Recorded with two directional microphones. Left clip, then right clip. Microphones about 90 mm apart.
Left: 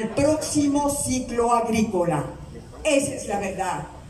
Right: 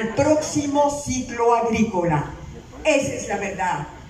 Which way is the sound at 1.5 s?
30° left (ahead or behind).